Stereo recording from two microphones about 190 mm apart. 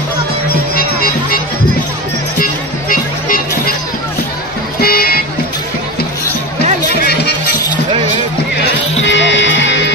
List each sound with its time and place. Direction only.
0.7 s music: 50° left (ahead or behind)
4.7 s vehicle: 55° left (ahead or behind)
9.0 s music: 70° left (ahead or behind)